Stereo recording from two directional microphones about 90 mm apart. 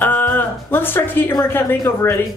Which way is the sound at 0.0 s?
20° left (ahead or behind).